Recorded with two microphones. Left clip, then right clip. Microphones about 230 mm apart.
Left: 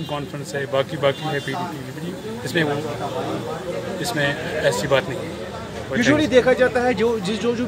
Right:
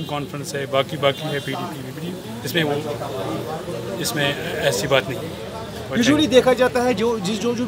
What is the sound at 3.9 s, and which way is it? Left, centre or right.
A man's voice, centre.